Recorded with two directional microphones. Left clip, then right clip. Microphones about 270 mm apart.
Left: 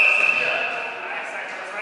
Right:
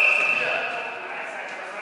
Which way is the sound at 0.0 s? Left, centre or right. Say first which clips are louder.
Left 2 dB; centre.